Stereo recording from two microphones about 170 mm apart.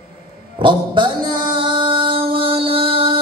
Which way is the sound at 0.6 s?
30° right (ahead or behind).